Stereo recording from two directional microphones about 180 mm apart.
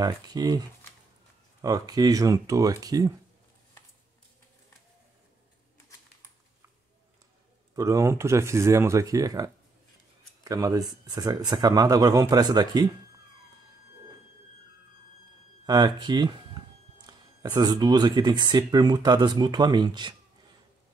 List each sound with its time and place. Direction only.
0.0 s speech: 20° right (ahead or behind)
7.7 s speech: 20° right (ahead or behind)
15.6 s speech: 25° right (ahead or behind)